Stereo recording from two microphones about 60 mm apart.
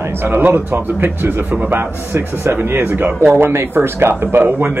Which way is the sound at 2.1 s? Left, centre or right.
Right.